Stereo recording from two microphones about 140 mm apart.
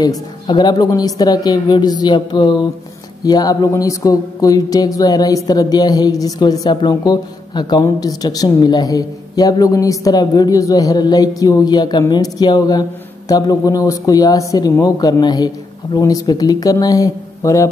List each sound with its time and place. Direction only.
0.0 s speech: 30° left (ahead or behind)